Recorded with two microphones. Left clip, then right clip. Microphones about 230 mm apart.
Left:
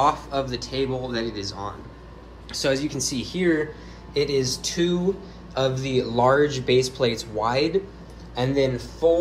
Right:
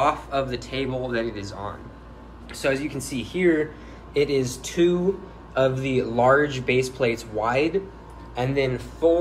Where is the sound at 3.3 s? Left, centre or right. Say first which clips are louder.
Right 3 dB; left.